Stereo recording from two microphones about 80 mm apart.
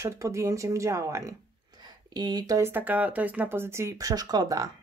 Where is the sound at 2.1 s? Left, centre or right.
Right.